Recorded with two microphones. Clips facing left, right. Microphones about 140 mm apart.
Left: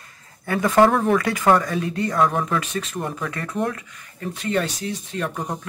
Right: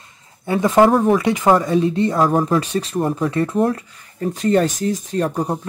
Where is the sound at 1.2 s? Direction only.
20° right (ahead or behind).